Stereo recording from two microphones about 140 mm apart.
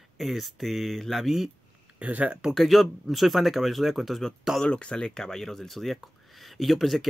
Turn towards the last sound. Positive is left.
turn(degrees=0)  # may be behind; listen again after turning